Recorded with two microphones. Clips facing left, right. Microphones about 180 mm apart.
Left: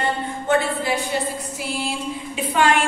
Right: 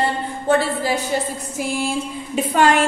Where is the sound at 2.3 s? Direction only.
40° right (ahead or behind).